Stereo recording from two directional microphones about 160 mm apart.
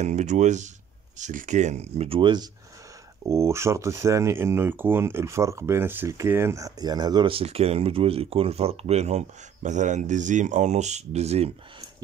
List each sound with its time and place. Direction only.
0.0 s speech: 45° right (ahead or behind)
3.3 s speech: 20° right (ahead or behind); by 11.5 s 40° right (ahead or behind)